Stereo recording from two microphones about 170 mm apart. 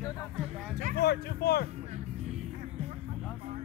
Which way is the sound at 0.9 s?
70° left (ahead or behind).